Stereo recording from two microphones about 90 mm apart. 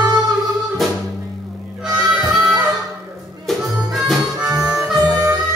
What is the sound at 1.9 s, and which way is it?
Music, 10° right (ahead or behind).